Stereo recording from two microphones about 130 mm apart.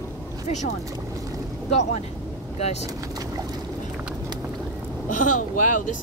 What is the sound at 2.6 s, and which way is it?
Speech, 55° left (ahead or behind).